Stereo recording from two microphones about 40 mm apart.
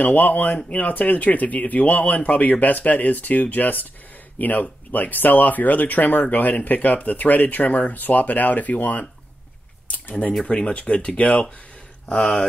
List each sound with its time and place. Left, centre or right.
0.0 s speech: left
10.4 s speech: left